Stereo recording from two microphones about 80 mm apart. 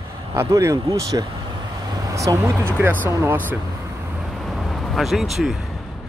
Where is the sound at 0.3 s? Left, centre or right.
Right.